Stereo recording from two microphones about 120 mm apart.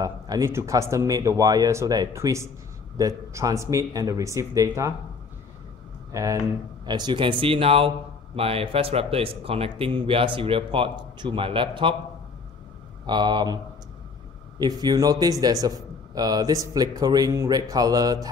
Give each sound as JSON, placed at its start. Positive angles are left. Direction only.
{"t": 0.0, "sound": "speech", "side_deg": -30}
{"t": 6.1, "sound": "speech", "side_deg": -25}
{"t": 6.9, "sound": "a man's voice", "side_deg": -40}
{"t": 13.0, "sound": "speech", "side_deg": -40}
{"t": 14.6, "sound": "speech", "side_deg": -35}